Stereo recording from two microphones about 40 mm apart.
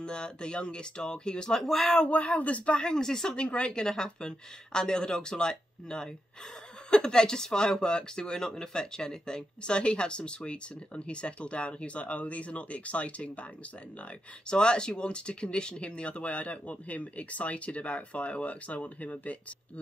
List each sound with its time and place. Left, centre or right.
0.0 s speech: left
2.3 s speech: left
2.8 s speech: centre
3.3 s speech: left
14.5 s speech: left